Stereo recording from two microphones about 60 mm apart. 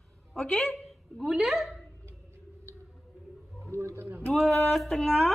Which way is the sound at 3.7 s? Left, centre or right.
Right.